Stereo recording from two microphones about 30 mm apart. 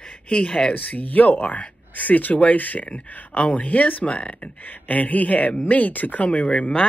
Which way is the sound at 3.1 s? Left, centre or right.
Left.